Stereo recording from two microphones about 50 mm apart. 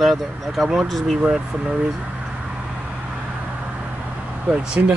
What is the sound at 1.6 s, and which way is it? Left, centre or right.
Speech, right.